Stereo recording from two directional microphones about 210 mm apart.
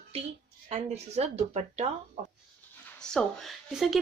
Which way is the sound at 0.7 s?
30° right (ahead or behind).